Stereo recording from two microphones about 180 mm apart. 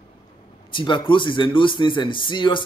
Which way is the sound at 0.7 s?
25° left (ahead or behind).